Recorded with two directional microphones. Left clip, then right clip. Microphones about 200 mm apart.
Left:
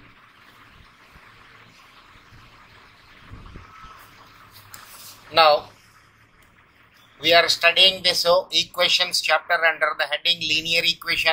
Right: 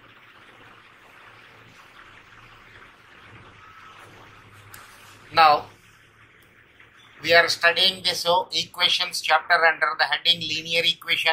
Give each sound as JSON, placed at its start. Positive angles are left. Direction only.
{"t": 5.3, "sound": "speech", "side_deg": 30}
{"t": 7.2, "sound": "speech", "side_deg": 30}